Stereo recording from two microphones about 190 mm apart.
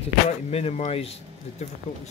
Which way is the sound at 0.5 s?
30° left (ahead or behind).